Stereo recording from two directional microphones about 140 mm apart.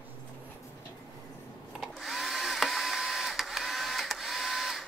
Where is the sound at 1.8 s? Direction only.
Centre (ahead or behind).